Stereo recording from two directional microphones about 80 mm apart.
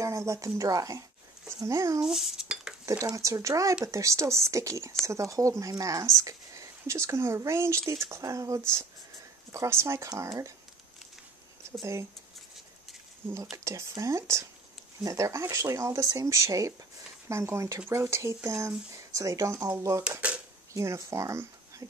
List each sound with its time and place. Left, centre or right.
0.0 s a sound: right
0.6 s a child's voice: right
2.0 s dishes: centre
2.8 s speech: right
11.8 s speech: right
13.5 s speech: right
20.0 s typewriter: centre
20.7 s speech: right